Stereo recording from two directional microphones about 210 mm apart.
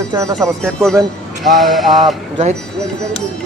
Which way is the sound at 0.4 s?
5° left (ahead or behind).